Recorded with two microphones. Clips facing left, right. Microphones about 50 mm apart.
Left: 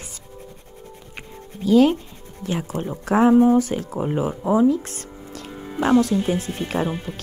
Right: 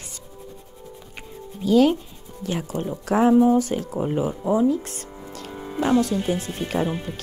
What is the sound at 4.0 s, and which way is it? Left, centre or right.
Speech, centre.